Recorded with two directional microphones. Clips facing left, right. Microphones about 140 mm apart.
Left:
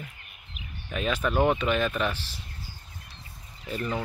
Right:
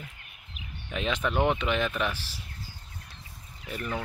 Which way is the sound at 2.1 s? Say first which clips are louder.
Left 1 dB; 10° right (ahead or behind).